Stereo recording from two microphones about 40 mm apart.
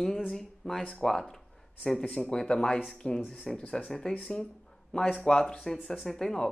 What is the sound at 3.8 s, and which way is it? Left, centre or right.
Speech, centre.